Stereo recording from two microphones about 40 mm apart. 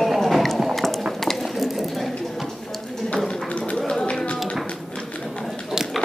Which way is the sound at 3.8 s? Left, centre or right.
Centre.